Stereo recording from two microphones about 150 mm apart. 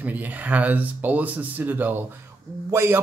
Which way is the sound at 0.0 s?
10° right (ahead or behind).